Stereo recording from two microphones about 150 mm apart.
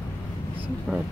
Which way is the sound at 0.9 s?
Centre (ahead or behind).